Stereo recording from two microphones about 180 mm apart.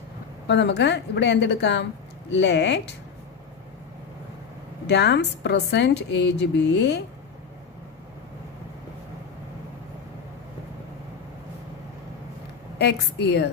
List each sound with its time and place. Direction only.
0.5 s a woman's voice: 75° left (ahead or behind)
4.8 s a woman's voice: 70° left (ahead or behind)
12.7 s a woman's voice: 65° left (ahead or behind)